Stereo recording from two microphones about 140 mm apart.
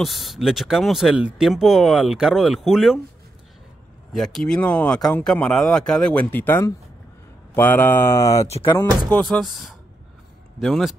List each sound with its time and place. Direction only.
0.0 s speech: centre (ahead or behind)
4.1 s speech: centre (ahead or behind); by 8.5 s 25° left (ahead or behind)
9.1 s speech: 5° left (ahead or behind)